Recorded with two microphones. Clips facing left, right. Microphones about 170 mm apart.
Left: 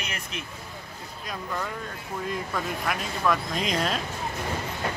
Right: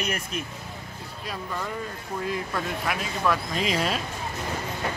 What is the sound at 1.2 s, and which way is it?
Speech, 5° right (ahead or behind).